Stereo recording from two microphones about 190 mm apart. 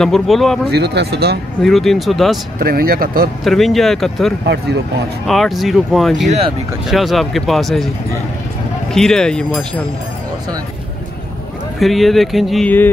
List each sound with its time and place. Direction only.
0.0 s speech: centre (ahead or behind)
0.7 s speech: 60° right (ahead or behind)
1.6 s speech: centre (ahead or behind)
2.6 s speech: 50° right (ahead or behind)
3.4 s speech: centre (ahead or behind)
8.9 s speech: 5° left (ahead or behind)
11.8 s speech: centre (ahead or behind)